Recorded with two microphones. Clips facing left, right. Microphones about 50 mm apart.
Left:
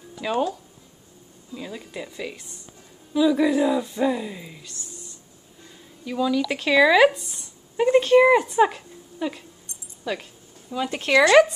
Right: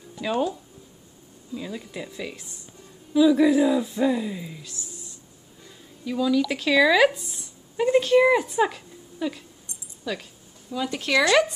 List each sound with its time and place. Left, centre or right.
0.2 s speech: centre
1.5 s speech: centre
6.0 s speech: centre
7.7 s a sound: centre
8.2 s speech: centre
8.5 s a sound: centre
10.1 s speech: left